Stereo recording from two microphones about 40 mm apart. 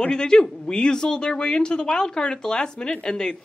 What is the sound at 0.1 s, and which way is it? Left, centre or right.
A woman's voice, centre.